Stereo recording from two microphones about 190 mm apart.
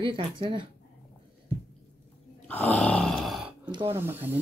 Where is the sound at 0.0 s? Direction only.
25° right (ahead or behind).